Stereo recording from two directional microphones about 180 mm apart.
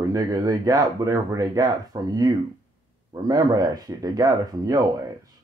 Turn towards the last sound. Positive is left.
turn(degrees=-20)  # may be behind; listen again after turning